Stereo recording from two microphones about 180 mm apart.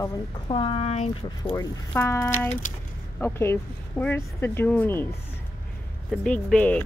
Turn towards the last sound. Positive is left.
turn(degrees=10)  # may be behind; listen again after turning